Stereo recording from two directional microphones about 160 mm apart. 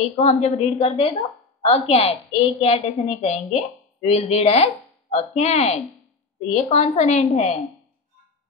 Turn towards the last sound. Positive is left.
turn(degrees=45)  # may be behind; listen again after turning